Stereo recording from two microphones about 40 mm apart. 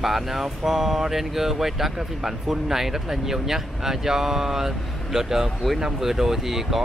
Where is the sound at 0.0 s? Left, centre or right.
Centre.